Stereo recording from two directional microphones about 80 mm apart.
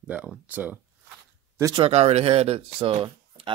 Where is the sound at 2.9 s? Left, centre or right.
Right.